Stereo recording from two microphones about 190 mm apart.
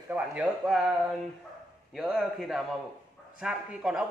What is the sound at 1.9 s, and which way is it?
A man's voice, centre (ahead or behind).